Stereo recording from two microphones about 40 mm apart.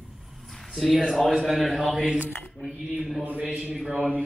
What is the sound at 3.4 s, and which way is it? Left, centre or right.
Speech, right.